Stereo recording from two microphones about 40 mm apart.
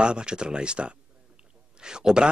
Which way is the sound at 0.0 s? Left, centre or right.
Right.